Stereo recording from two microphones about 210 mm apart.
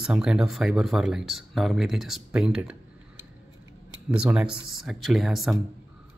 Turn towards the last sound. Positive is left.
turn(degrees=0)  # may be behind; listen again after turning